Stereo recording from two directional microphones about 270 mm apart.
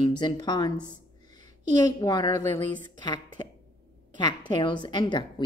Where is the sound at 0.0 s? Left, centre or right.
Centre.